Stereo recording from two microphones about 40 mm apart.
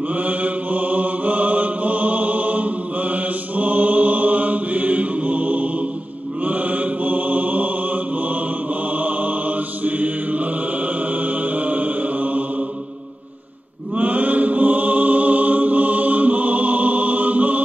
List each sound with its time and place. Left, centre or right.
0.1 s mantra: right
13.9 s mantra: right